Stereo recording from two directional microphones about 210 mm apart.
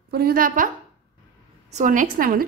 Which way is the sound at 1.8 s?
40° right (ahead or behind).